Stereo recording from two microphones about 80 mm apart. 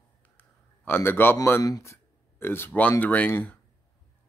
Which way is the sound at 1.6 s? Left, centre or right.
Left.